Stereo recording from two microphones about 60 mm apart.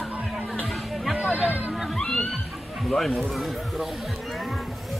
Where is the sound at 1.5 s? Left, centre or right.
Right.